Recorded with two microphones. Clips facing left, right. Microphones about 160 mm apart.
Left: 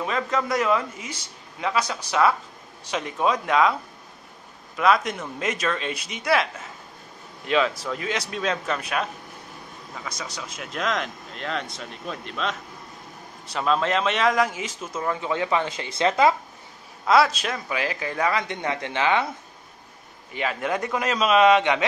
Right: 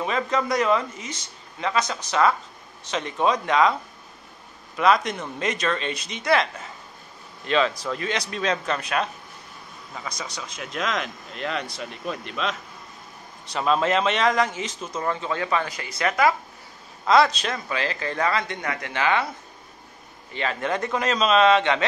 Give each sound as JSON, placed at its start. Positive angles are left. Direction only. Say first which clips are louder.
{"t": 0.0, "sound": "speech", "louder": "right 1 dB", "side_deg": 0}
{"t": 4.7, "sound": "speech", "louder": "right 1 dB", "side_deg": 5}
{"t": 10.0, "sound": "speech", "louder": "even", "side_deg": 5}
{"t": 17.0, "sound": "speech", "louder": "right 1 dB", "side_deg": 5}
{"t": 20.3, "sound": "speech", "louder": "even", "side_deg": 10}